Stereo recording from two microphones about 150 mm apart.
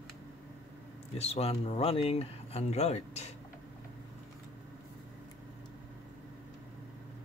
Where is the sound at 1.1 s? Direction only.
45° left (ahead or behind).